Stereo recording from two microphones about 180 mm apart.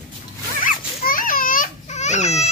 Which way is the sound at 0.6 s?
50° left (ahead or behind).